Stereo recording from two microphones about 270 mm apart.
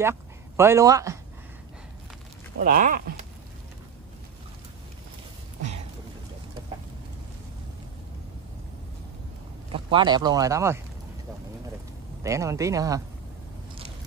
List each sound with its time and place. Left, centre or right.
0.0 s a man's voice: centre
2.6 s speech: right
9.7 s speech: centre
12.2 s a man's voice: centre